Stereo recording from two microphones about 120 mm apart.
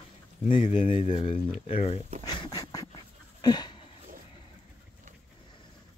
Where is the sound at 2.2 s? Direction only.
35° left (ahead or behind).